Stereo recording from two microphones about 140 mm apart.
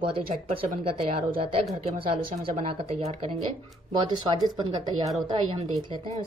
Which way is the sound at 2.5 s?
50° right (ahead or behind).